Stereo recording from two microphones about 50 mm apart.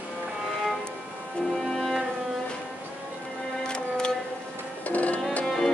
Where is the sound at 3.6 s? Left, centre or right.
Centre.